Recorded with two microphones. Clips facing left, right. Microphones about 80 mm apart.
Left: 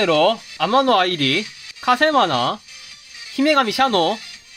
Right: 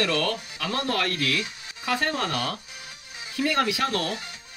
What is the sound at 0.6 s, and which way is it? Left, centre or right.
Speech, left.